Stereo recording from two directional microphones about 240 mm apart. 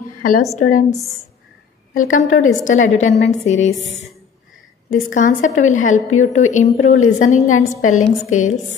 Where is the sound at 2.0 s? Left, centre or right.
Left.